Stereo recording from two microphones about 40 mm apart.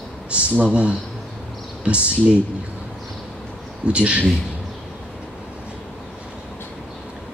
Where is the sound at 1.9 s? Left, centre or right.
Right.